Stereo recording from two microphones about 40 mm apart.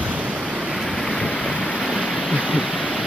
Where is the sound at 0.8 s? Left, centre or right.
Centre.